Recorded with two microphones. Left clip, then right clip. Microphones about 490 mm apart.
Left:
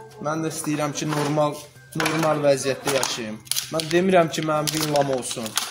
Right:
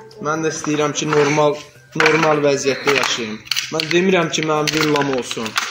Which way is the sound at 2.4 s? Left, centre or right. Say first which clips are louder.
Right 4 dB; left.